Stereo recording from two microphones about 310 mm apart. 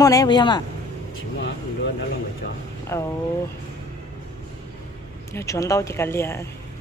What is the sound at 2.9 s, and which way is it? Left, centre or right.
Speech, centre.